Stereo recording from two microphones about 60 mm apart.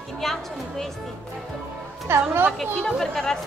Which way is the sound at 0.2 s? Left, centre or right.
Centre.